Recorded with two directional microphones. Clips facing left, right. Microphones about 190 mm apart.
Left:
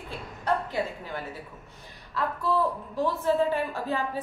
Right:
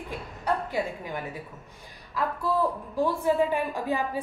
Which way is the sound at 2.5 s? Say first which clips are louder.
Left 1 dB; 10° right (ahead or behind).